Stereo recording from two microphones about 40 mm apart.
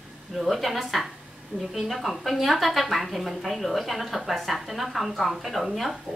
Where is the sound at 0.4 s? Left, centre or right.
Centre.